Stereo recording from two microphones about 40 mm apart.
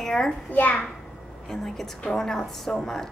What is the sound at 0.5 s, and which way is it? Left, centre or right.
Speech, left.